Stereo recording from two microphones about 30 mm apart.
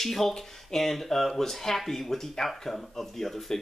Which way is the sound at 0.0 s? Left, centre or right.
Centre.